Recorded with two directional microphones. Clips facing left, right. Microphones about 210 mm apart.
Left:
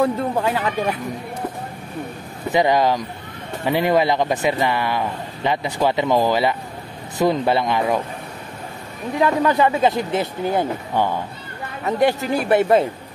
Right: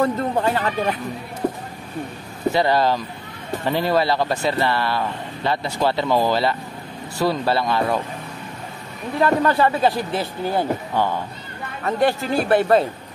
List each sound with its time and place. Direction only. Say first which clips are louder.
0.0 s speech: even; 10° left (ahead or behind)
2.5 s speech: left 3 dB; 15° left (ahead or behind)
9.2 s speech: even; 15° left (ahead or behind)